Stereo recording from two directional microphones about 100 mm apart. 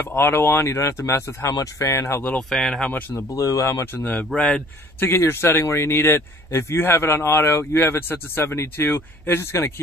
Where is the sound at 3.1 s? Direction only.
35° left (ahead or behind).